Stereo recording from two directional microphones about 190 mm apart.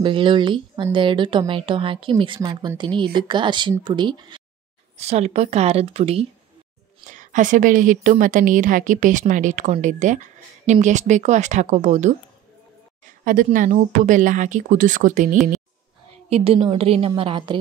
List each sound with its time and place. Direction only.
0.0 s speech: 25° right (ahead or behind)
4.9 s a woman's voice: 35° right (ahead or behind)
7.1 s a woman's voice: 40° right (ahead or behind)
16.3 s speech: 30° right (ahead or behind)